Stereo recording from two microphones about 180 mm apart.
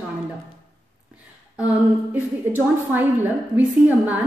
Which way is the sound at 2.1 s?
10° right (ahead or behind).